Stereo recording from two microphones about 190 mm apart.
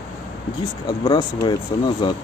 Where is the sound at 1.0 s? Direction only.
20° left (ahead or behind).